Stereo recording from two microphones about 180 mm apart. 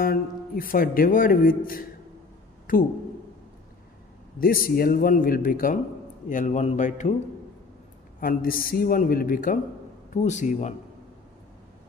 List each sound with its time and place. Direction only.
0.0 s speech: 55° left (ahead or behind)
4.4 s speech: 50° left (ahead or behind)
8.2 s speech: 55° left (ahead or behind)